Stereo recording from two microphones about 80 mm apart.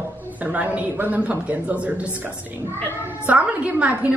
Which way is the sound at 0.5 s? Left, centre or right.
Centre.